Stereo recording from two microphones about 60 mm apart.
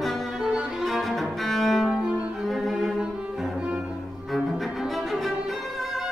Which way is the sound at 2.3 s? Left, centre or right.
Centre.